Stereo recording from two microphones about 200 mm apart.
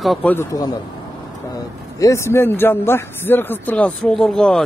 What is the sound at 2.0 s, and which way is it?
A man's voice, 15° left (ahead or behind).